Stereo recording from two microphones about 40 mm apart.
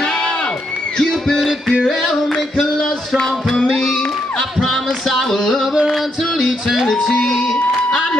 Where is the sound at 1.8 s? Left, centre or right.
Centre.